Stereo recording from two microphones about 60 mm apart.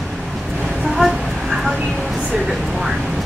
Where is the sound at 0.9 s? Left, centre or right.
Centre.